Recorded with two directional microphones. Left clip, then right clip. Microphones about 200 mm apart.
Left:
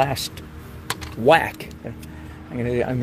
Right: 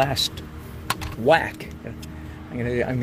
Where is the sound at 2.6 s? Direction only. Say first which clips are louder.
Left 2 dB; 30° left (ahead or behind).